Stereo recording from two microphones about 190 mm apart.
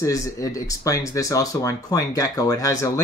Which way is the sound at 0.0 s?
15° left (ahead or behind).